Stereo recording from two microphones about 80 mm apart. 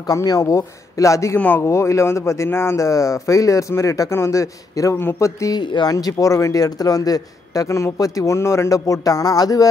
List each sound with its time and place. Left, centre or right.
0.1 s a man's voice: left
5.6 s a man's voice: left